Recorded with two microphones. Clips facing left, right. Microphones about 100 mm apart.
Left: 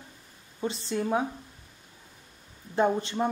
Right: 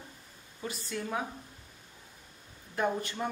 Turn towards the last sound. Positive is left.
turn(degrees=25)  # may be behind; listen again after turning